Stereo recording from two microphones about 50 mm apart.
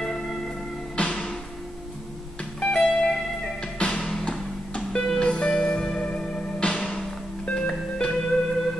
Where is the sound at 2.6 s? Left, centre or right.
Centre.